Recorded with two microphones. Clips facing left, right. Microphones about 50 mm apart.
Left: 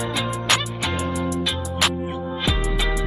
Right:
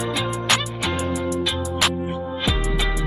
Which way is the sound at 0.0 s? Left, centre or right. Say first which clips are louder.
Right 1 dB; centre.